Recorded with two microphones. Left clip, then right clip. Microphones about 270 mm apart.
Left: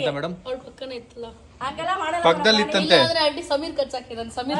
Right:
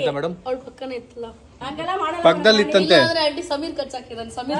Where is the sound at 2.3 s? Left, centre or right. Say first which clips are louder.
Right 3 dB; centre.